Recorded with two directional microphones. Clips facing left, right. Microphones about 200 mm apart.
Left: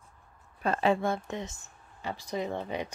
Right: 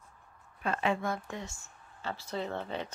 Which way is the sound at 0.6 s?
35° left (ahead or behind).